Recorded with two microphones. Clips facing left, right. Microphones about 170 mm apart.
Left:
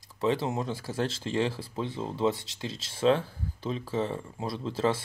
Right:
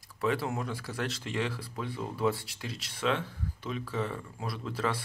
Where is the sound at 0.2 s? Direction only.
25° left (ahead or behind).